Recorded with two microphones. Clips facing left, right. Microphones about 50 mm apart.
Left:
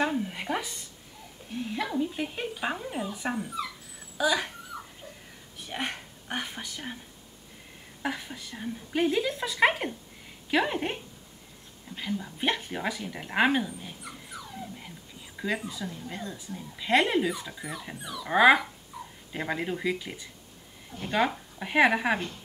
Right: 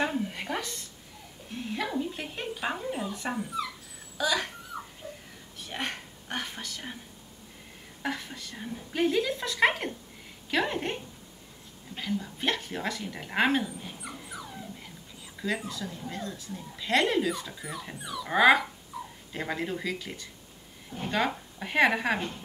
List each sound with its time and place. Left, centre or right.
0.0 s a sound: centre
1.5 s dog: centre
4.2 s speech: centre
5.7 s whispering: centre
8.0 s whispering: centre
8.9 s speech: centre
12.0 s speech: centre
14.0 s dog: centre
15.4 s speech: centre
20.9 s speech: right
21.3 s a woman's voice: centre